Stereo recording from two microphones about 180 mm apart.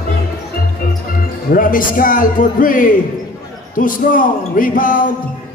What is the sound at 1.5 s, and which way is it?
A man's voice, 50° left (ahead or behind).